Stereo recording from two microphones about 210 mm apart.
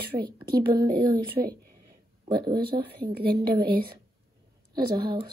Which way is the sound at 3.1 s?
50° right (ahead or behind).